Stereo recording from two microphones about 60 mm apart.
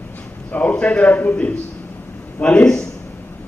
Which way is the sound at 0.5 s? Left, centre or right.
Left.